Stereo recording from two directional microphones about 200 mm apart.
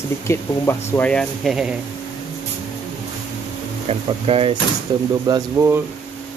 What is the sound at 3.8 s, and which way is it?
Speech, 30° right (ahead or behind).